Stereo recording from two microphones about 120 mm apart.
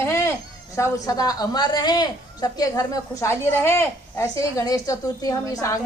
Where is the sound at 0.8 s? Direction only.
30° left (ahead or behind).